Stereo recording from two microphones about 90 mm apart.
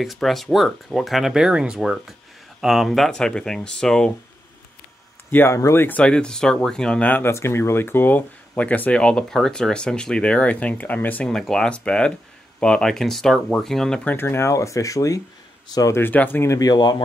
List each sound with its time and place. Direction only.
0.0 s speech: centre (ahead or behind)
5.3 s speech: 30° left (ahead or behind)
5.9 s speech: 10° left (ahead or behind)
7.2 s speech: 30° left (ahead or behind)
11.2 s speech: 5° left (ahead or behind)
14.0 s speech: 25° left (ahead or behind)
15.9 s speech: 20° left (ahead or behind)
16.5 s speech: 50° left (ahead or behind)